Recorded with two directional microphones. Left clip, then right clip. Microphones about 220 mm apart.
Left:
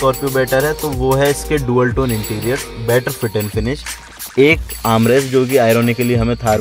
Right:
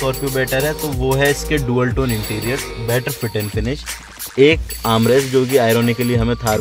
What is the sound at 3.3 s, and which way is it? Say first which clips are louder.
Speech: left 3 dB; 10° left (ahead or behind).